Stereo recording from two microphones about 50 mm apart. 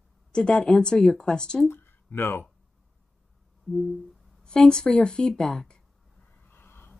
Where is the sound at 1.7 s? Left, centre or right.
Left.